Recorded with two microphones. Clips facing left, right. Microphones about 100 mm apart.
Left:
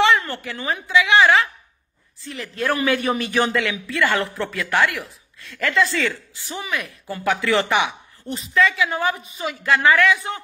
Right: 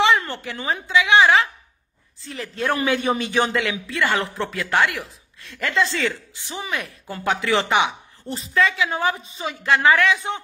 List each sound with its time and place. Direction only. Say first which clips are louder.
0.0 s a woman's voice: left 1 dB; 20° right (ahead or behind)
8.3 s a man's voice: left 1 dB; 30° right (ahead or behind)